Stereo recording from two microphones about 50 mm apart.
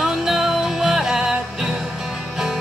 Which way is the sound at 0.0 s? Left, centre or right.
Centre.